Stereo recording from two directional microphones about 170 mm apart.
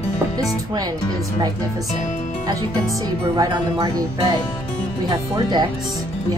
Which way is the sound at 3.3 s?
20° right (ahead or behind).